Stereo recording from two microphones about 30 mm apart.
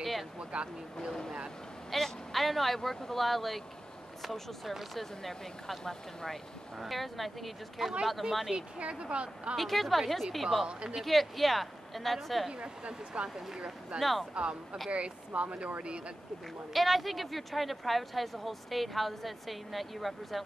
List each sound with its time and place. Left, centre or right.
0.4 s speech: right
1.9 s speech: centre
7.8 s speech: centre
8.2 s speech: right
9.6 s speech: centre
12.5 s speech: right
13.9 s speech: centre
14.3 s speech: right
16.7 s speech: centre